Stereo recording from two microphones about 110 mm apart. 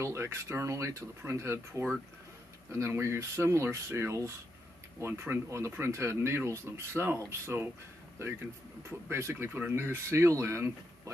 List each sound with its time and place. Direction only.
0.0 s speech: 25° right (ahead or behind)
9.1 s speech: 20° right (ahead or behind)